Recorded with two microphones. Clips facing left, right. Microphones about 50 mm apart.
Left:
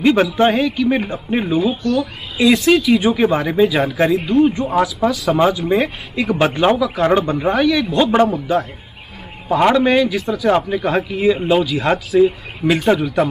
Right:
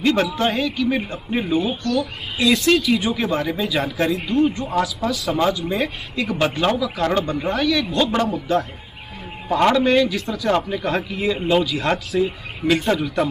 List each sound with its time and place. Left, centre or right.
0.0 s a man's voice: centre
3.0 s a man's voice: left
9.5 s a man's voice: centre